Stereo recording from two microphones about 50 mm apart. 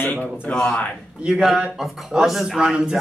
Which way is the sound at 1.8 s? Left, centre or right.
Centre.